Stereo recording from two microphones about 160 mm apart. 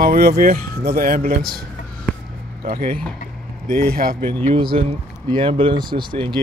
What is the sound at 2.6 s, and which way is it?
Speech, 65° right (ahead or behind).